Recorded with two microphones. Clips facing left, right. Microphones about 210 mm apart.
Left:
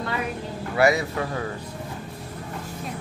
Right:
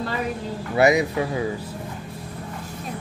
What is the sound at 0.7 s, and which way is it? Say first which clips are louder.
Speech: right 3 dB; 20° right (ahead or behind).